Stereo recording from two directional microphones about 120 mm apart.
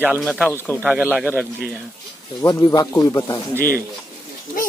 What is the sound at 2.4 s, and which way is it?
Speech, 35° left (ahead or behind).